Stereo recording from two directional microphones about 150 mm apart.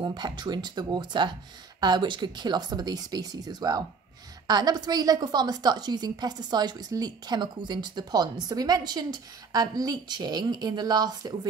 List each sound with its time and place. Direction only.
0.0 s a woman's voice: 30° right (ahead or behind)